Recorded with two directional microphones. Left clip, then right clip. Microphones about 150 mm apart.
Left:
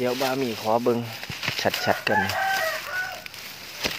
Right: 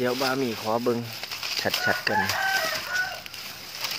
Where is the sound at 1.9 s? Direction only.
15° left (ahead or behind).